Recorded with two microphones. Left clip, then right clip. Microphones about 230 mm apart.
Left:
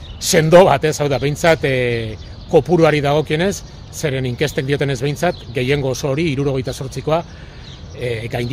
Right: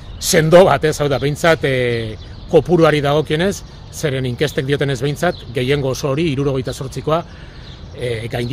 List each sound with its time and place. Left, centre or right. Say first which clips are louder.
0.2 s speech: even; centre